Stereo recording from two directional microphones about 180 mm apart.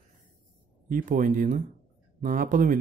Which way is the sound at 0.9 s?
50° right (ahead or behind).